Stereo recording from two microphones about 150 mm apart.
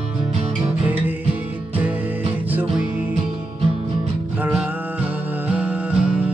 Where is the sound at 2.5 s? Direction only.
10° right (ahead or behind).